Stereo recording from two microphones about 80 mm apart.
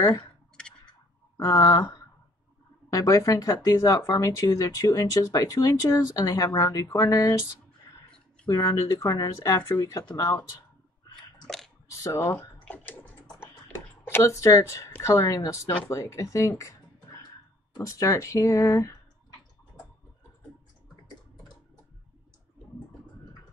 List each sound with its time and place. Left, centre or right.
0.2 s clicking: centre
1.4 s speech: left
8.6 s speech: left
11.4 s a sound: centre
11.9 s speech: left
12.6 s typing: left
14.0 s speech: left